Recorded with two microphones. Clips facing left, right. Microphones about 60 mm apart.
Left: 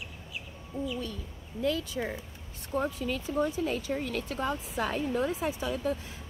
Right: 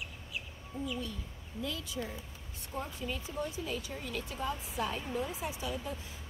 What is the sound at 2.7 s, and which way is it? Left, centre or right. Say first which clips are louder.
Speech: left 8 dB; left.